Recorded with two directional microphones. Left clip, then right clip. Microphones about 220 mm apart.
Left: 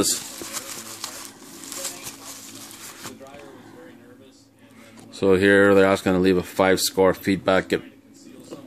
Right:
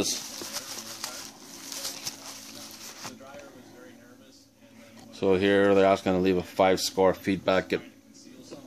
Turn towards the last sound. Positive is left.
turn(degrees=15)  # may be behind; listen again after turning